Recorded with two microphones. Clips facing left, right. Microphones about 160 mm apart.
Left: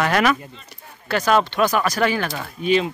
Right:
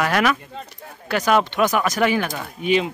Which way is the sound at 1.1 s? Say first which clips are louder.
Even; 15° right (ahead or behind).